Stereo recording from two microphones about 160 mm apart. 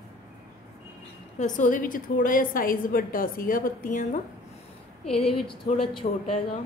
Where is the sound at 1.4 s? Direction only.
50° left (ahead or behind).